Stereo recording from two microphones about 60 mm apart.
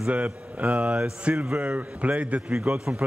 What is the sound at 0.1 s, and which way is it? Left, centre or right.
Speech, right.